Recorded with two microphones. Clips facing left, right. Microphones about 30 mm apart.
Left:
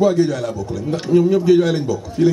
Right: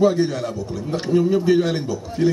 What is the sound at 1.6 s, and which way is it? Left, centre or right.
Speech, centre.